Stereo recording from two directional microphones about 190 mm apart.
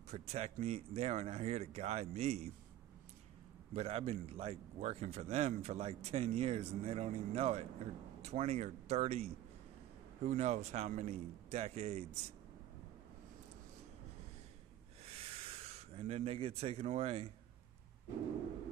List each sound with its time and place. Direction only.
0.1 s a man's voice: 35° right (ahead or behind)
3.7 s a man's voice: 30° right (ahead or behind)
15.0 s a sound: 30° right (ahead or behind)